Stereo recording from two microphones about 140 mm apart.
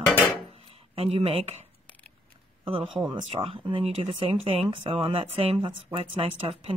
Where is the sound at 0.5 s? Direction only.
45° right (ahead or behind).